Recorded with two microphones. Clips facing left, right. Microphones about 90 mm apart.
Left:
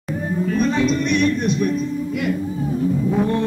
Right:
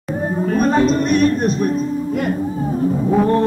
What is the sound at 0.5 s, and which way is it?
Speech, 45° right (ahead or behind).